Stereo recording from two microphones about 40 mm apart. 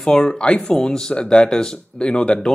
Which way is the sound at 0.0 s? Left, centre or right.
Centre.